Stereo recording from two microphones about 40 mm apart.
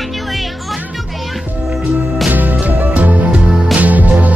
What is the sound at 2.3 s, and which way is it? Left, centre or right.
Music, right.